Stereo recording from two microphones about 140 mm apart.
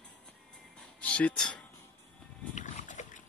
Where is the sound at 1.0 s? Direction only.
10° left (ahead or behind).